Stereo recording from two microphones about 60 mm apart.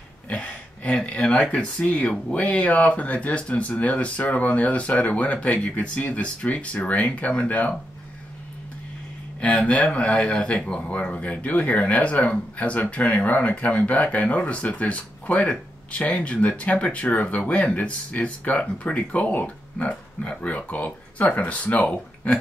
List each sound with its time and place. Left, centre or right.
0.3 s a sound: left
2.3 s speech: left
9.4 s speech: left